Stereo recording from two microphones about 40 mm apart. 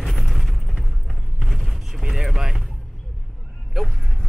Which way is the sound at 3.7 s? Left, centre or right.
Centre.